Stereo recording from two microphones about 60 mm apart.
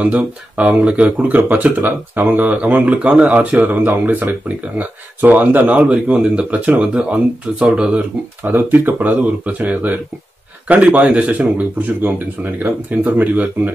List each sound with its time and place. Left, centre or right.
0.0 s speech: right
8.4 s speech: right